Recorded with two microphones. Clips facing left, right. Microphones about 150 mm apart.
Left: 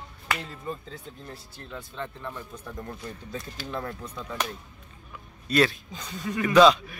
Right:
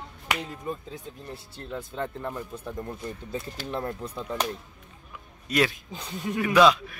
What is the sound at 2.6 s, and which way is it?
A man's voice, 20° right (ahead or behind).